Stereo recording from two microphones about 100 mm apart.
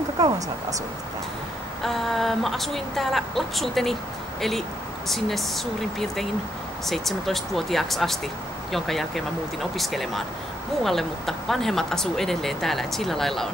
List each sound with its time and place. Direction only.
0.2 s speech: 35° right (ahead or behind)
1.8 s speech: centre (ahead or behind)